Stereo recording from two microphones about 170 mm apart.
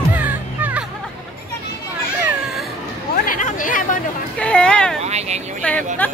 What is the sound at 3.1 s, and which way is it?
Chatter, 55° left (ahead or behind).